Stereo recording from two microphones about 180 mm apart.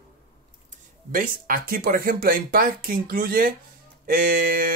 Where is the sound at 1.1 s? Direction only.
50° right (ahead or behind).